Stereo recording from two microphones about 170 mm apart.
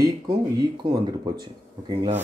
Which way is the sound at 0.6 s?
25° right (ahead or behind).